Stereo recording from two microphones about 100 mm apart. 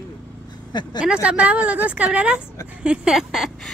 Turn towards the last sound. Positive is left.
turn(degrees=0)  # may be behind; listen again after turning